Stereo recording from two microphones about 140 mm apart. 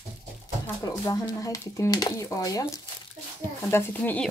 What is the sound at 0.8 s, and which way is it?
Speech, 25° left (ahead or behind).